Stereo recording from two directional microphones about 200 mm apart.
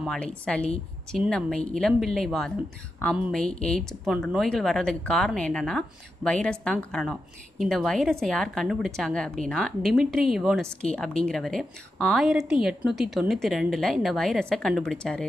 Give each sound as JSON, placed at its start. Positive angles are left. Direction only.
{"t": 0.0, "sound": "a woman's voice", "side_deg": 5}